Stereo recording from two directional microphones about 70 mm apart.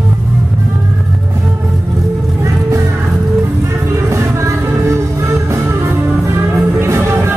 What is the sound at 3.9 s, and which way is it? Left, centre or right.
Music, right.